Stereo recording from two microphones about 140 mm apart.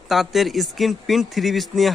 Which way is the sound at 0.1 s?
Centre (ahead or behind).